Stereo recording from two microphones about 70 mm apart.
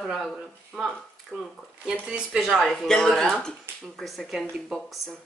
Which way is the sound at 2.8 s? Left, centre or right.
Centre.